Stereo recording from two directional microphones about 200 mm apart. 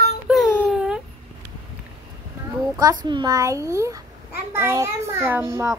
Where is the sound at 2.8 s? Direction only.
20° right (ahead or behind).